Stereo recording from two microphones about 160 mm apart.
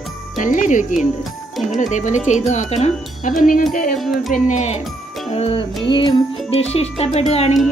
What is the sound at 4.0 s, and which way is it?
Music, centre (ahead or behind).